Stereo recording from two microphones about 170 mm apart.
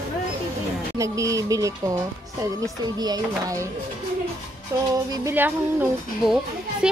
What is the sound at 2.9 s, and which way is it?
Speech, 20° right (ahead or behind).